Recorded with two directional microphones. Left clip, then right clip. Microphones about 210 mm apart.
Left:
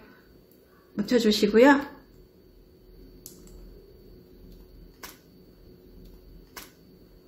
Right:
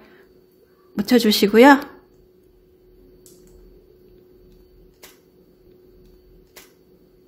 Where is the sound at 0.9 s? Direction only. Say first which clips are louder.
Right 6 dB; 50° right (ahead or behind).